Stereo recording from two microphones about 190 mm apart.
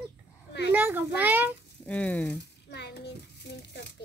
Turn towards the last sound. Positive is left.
turn(degrees=60)  # may be behind; listen again after turning